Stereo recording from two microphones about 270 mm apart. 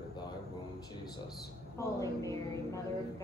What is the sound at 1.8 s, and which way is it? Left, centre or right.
Speech, centre.